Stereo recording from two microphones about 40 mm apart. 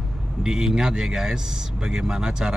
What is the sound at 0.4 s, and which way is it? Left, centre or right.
Speech, centre.